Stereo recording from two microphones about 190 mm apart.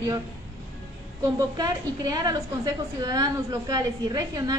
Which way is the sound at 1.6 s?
20° right (ahead or behind).